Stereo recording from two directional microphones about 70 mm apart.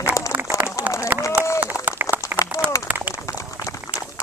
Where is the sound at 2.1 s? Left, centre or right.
Left.